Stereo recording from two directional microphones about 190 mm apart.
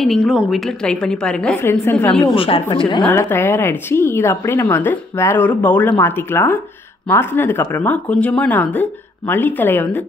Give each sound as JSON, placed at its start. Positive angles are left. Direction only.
{"t": 0.0, "sound": "a woman's voice", "side_deg": 0}
{"t": 2.3, "sound": "speech", "side_deg": 30}
{"t": 3.1, "sound": "a woman's voice", "side_deg": 10}